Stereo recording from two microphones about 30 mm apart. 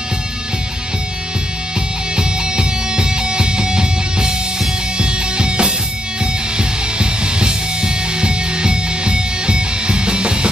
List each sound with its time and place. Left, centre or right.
2.1 s music: right
7.0 s music: right